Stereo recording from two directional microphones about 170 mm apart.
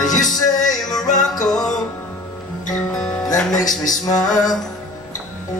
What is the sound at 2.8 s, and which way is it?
Music, 5° left (ahead or behind).